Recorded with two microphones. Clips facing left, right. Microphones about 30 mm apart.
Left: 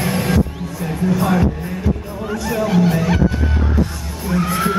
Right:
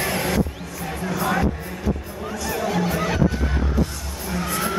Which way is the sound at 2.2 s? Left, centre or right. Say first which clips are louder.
Left 5 dB; centre.